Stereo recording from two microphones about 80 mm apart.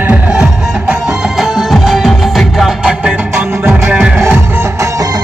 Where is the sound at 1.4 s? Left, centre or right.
Centre.